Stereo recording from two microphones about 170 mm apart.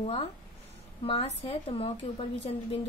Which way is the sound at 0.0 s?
35° left (ahead or behind).